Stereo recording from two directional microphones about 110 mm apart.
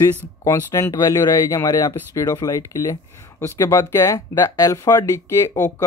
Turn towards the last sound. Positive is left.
turn(degrees=30)  # may be behind; listen again after turning